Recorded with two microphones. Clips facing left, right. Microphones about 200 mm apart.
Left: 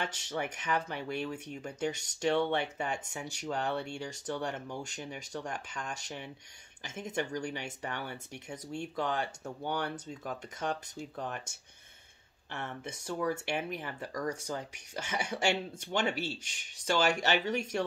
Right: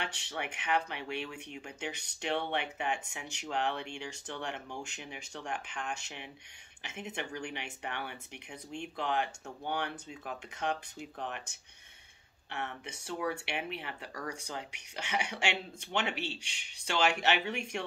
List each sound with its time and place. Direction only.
0.0 s speech: 40° left (ahead or behind)
12.5 s speech: 40° left (ahead or behind)